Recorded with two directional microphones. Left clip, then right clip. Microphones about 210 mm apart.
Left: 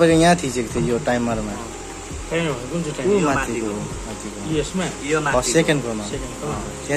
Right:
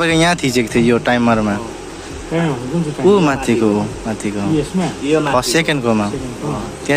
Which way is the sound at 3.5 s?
20° right (ahead or behind).